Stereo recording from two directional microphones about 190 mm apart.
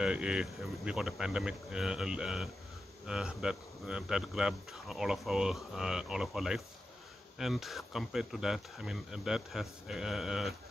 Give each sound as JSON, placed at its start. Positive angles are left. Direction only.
{"t": 0.0, "sound": "a man's voice", "side_deg": -5}